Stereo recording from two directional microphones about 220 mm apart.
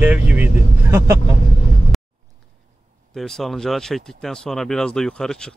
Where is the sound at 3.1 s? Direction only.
Centre (ahead or behind).